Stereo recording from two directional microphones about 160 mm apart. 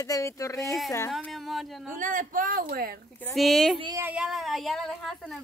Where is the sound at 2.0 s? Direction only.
55° right (ahead or behind).